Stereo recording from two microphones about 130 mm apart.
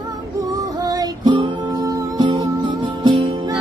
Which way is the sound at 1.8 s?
25° right (ahead or behind).